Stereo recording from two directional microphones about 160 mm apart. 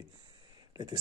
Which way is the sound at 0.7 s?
25° right (ahead or behind).